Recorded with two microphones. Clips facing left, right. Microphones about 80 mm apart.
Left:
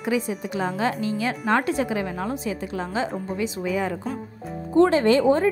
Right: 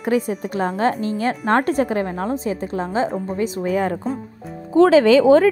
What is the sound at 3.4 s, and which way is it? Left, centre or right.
Speech, right.